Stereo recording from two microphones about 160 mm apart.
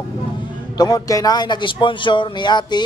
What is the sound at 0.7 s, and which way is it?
Speech, 25° left (ahead or behind).